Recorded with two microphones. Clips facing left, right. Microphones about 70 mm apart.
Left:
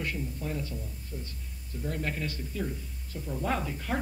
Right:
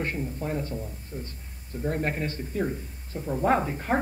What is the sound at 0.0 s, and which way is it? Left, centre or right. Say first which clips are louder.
Speech: right 4 dB; right.